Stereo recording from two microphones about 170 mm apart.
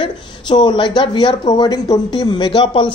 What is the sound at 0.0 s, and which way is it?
A woman's voice, 25° left (ahead or behind).